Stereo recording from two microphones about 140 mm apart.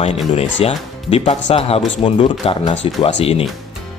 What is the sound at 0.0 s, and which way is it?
Speech, 45° left (ahead or behind).